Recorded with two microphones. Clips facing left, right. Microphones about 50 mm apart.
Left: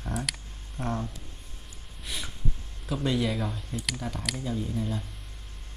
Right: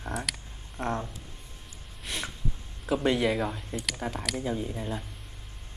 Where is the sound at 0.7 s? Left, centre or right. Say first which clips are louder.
Right 1 dB; centre.